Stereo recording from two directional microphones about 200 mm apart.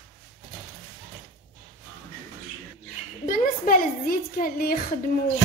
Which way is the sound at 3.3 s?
45° left (ahead or behind).